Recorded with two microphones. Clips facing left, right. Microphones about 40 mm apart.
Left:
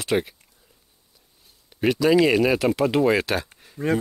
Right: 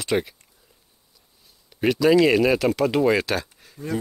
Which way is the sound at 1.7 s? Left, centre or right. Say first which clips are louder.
Right 1 dB; centre.